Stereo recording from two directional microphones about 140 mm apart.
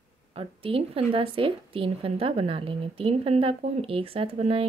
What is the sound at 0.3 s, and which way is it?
A woman's voice, 45° right (ahead or behind).